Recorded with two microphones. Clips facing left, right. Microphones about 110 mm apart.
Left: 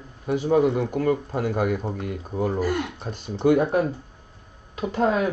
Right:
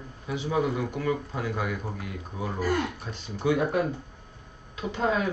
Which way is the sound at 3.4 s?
40° left (ahead or behind).